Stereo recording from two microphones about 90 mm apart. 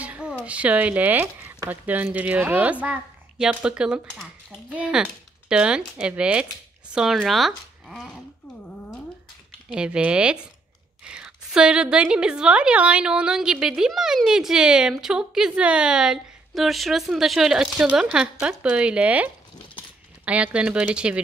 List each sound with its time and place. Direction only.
0.0 s a sound: 15° right (ahead or behind)
0.5 s a woman's voice: 15° right (ahead or behind)
9.7 s a woman's voice: 15° right (ahead or behind)